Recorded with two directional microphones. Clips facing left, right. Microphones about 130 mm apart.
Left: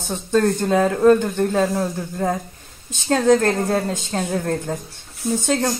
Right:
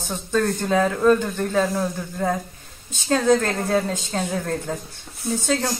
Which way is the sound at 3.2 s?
Centre (ahead or behind).